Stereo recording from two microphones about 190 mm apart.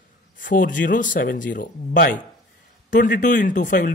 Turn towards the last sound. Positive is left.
turn(degrees=45)  # may be behind; listen again after turning